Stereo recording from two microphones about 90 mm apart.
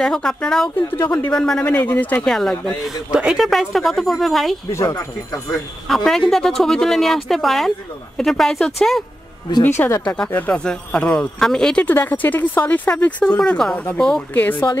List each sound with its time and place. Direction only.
0.0 s speech: 5° left (ahead or behind)
0.7 s speech: 25° left (ahead or behind)
1.3 s speech: 10° left (ahead or behind)
1.7 s speech: 20° left (ahead or behind)
2.2 s speech: 5° left (ahead or behind)
4.6 s speech: 30° left (ahead or behind)
5.9 s speech: 5° left (ahead or behind)
9.8 s speech: 35° left (ahead or behind)
10.0 s speech: 10° left (ahead or behind)
11.8 s speech: 20° left (ahead or behind)
14.3 s speech: 20° left (ahead or behind)